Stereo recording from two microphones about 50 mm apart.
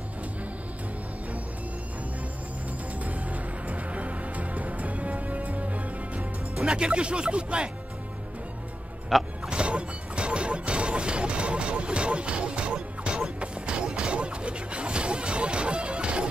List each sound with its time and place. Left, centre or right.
3.0 s music: right
6.1 s speech: centre
9.1 s speech: centre
9.5 s music: right